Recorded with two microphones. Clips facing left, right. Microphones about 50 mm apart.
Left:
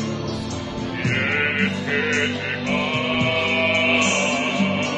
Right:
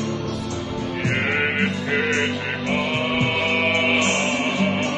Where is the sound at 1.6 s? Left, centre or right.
Centre.